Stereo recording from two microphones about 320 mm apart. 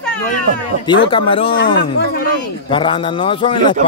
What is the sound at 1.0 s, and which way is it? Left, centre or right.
Speech, centre.